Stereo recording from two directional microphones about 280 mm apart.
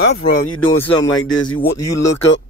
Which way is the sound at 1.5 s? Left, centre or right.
Centre.